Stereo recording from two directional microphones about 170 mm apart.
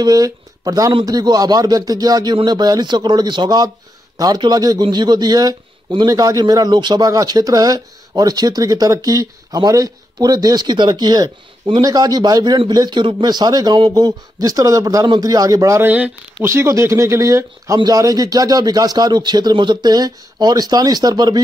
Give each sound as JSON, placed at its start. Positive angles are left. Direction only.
{"t": 0.0, "sound": "speech", "side_deg": -20}